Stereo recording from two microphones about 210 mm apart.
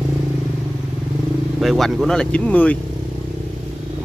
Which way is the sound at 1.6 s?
Centre (ahead or behind).